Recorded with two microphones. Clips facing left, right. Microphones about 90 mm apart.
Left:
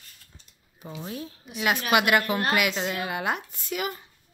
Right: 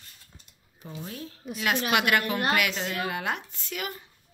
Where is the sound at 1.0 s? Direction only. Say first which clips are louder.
Left 2 dB; 10° left (ahead or behind).